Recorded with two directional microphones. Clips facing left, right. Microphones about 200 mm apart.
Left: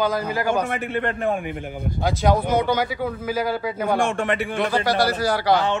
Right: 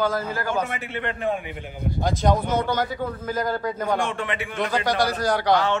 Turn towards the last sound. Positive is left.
turn(degrees=5)  # may be behind; listen again after turning